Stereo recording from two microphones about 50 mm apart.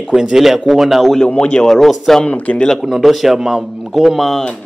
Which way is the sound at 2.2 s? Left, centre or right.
Left.